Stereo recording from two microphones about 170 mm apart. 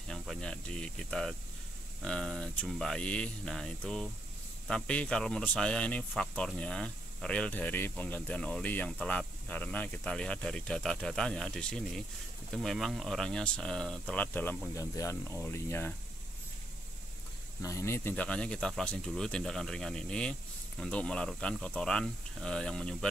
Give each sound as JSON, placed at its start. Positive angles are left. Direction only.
{"t": 0.1, "sound": "speech", "side_deg": 5}
{"t": 17.6, "sound": "speech", "side_deg": 15}